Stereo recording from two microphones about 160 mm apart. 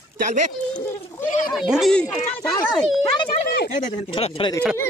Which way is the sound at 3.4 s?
90° left.